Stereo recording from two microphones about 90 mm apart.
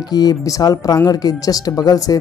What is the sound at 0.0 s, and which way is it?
Speech, 50° left (ahead or behind).